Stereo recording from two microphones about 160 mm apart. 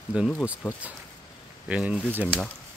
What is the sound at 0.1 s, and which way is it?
Speech, 5° right (ahead or behind).